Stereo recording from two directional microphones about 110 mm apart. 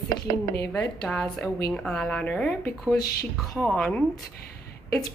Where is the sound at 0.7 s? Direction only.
5° left (ahead or behind).